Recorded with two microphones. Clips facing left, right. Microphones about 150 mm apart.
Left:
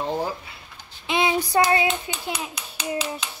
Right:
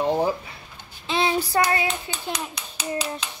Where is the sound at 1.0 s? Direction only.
15° left (ahead or behind).